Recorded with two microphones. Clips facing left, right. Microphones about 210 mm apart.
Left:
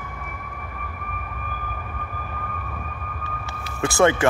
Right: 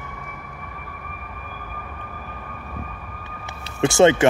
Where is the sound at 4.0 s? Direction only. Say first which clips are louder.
Right 3 dB; 20° right (ahead or behind).